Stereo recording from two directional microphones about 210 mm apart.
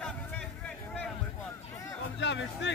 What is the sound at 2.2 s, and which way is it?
Speech, 55° left (ahead or behind).